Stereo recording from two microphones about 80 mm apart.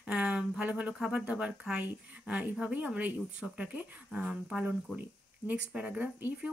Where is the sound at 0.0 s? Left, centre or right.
Centre.